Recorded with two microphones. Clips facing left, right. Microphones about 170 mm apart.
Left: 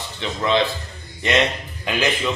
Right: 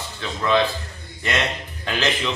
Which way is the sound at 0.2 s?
20° left (ahead or behind).